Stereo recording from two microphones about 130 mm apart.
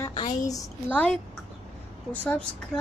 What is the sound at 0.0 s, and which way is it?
Speech, 30° left (ahead or behind).